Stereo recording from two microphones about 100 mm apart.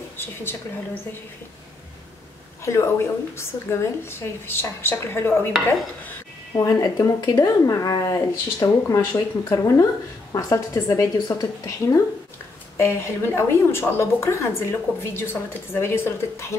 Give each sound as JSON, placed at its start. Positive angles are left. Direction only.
{"t": 0.2, "sound": "speech", "side_deg": 20}
{"t": 2.6, "sound": "a woman's voice", "side_deg": 25}
{"t": 6.5, "sound": "speech", "side_deg": 35}
{"t": 12.7, "sound": "a woman's voice", "side_deg": 25}